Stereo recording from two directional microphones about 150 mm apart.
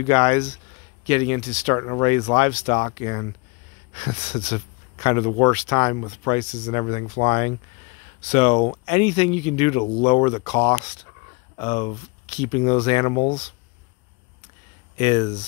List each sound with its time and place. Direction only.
0.0 s speech: 40° left (ahead or behind)
15.0 s speech: 35° left (ahead or behind)